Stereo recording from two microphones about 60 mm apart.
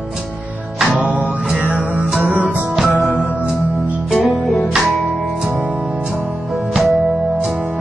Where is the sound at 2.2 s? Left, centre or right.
Right.